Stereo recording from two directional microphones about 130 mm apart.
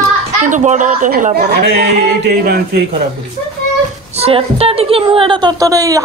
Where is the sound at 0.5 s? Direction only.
70° right (ahead or behind).